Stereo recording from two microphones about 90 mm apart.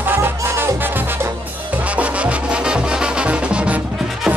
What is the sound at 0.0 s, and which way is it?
Music, 20° right (ahead or behind).